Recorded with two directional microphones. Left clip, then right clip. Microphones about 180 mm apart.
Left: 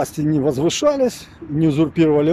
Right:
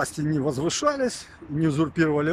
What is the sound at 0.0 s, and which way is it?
Speech, 15° left (ahead or behind).